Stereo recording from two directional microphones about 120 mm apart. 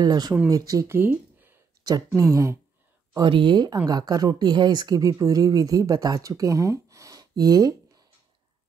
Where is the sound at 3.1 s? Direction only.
40° right (ahead or behind).